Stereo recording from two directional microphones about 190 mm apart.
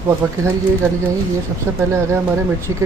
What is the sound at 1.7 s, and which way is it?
Speech, 15° right (ahead or behind).